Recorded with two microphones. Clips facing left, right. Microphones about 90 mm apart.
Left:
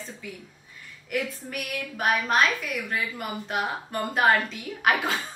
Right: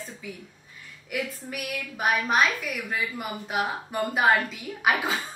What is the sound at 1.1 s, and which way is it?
A woman's voice, centre (ahead or behind).